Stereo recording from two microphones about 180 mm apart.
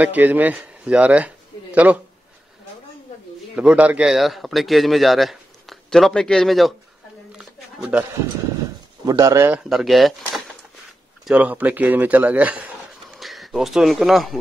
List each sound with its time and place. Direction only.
0.0 s a man's voice: 10° right (ahead or behind)
3.5 s speech: 5° right (ahead or behind)
7.3 s a sound: 5° right (ahead or behind)
9.0 s speech: 20° right (ahead or behind)
9.7 s speech: centre (ahead or behind)